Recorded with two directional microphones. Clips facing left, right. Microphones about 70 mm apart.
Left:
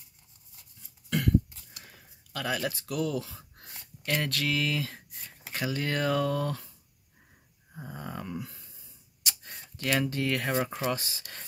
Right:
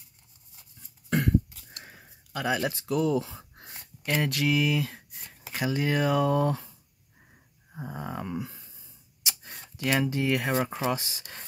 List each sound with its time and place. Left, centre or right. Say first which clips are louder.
1.9 s gasp: right 4 dB; right
4.1 s speech: right 4 dB; centre
7.7 s speech: right 4 dB; centre
9.8 s speech: right 2 dB; centre
10.8 s speech: right 2 dB; right